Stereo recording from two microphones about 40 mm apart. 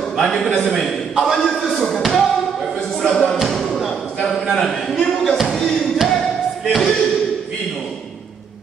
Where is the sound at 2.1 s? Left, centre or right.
Centre.